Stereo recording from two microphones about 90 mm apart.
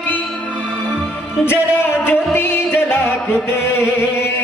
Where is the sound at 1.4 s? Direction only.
25° left (ahead or behind).